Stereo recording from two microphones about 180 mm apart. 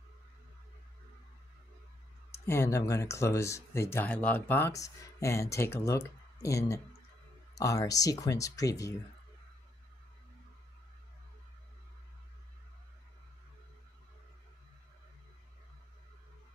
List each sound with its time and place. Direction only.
2.3 s speech: 15° left (ahead or behind)